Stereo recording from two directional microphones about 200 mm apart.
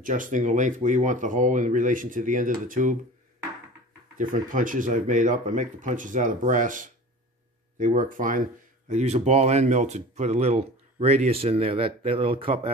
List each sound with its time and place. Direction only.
0.0 s speech: 40° right (ahead or behind)
4.2 s speech: 40° right (ahead or behind)